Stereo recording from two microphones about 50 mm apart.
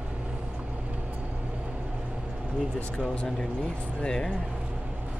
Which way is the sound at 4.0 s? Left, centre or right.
Centre.